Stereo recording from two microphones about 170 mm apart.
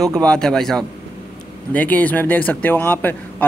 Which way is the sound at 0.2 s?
5° left (ahead or behind).